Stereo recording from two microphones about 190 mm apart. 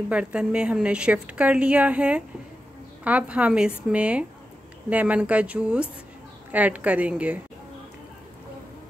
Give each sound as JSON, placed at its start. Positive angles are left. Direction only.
{"t": 0.1, "sound": "a woman's voice", "side_deg": -5}